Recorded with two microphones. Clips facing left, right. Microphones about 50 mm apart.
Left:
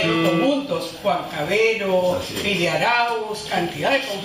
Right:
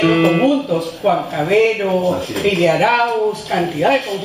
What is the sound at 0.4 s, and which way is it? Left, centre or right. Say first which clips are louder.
Music: right 5 dB; centre.